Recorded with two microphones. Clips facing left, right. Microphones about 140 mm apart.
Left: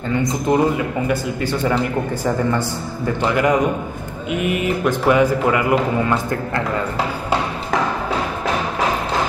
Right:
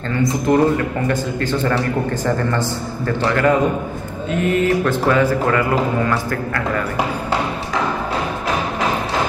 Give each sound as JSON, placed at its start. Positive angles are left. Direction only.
{"t": 0.2, "sound": "a man's voice", "side_deg": 15}
{"t": 3.2, "sound": "a man's voice", "side_deg": 15}